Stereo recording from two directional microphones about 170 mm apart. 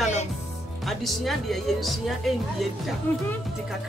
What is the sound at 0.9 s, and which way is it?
Speech, centre (ahead or behind).